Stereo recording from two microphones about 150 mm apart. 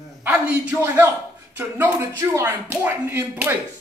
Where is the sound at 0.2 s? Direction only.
10° right (ahead or behind).